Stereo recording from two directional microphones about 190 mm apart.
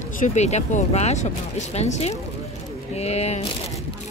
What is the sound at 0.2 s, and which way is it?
A woman's voice, 35° left (ahead or behind).